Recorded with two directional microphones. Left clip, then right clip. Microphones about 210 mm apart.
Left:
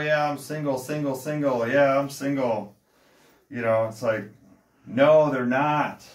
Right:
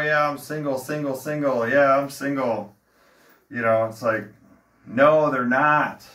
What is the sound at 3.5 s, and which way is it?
Speech, 10° left (ahead or behind).